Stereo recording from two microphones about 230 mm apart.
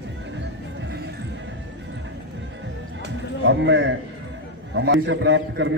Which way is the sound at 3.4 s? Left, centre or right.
Right.